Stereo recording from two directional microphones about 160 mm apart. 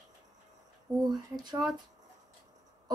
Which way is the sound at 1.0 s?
25° right (ahead or behind).